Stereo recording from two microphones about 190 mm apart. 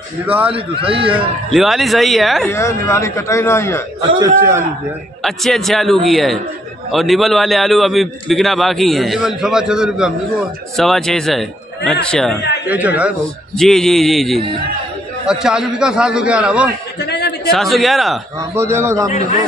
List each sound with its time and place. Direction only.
0.5 s a man's voice: 30° right (ahead or behind)
1.5 s a man's voice: centre (ahead or behind)
2.5 s a man's voice: 15° left (ahead or behind)
4.2 s a man's voice: 15° right (ahead or behind)
5.2 s a man's voice: centre (ahead or behind)
12.6 s a man's voice: 10° right (ahead or behind)
13.6 s a man's voice: centre (ahead or behind)
17.0 s a sound: 60° left (ahead or behind)
17.5 s a man's voice: centre (ahead or behind)
18.5 s a man's voice: 15° right (ahead or behind)